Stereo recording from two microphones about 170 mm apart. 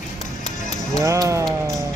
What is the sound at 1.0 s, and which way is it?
Music, 20° right (ahead or behind).